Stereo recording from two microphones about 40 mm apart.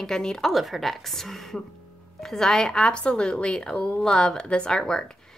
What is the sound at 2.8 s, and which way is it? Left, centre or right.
A woman's voice, left.